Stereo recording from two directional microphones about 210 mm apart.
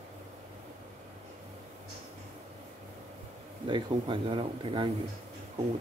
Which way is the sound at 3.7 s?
25° right (ahead or behind).